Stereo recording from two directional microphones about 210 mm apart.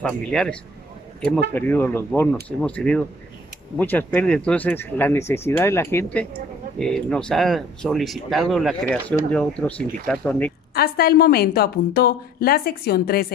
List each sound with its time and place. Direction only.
0.0 s speech: 5° left (ahead or behind)
10.7 s a woman's voice: 45° left (ahead or behind)